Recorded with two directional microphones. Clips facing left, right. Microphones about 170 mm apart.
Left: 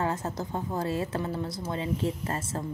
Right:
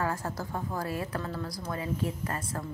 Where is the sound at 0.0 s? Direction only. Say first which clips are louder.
Left 2 dB; 20° left (ahead or behind).